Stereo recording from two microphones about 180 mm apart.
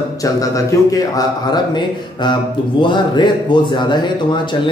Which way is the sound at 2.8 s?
25° left (ahead or behind).